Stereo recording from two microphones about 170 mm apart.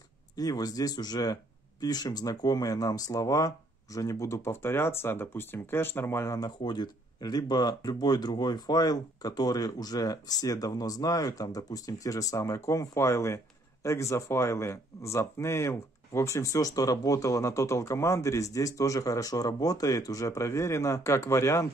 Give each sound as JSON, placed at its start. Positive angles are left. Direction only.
{"t": 0.4, "sound": "speech", "side_deg": 20}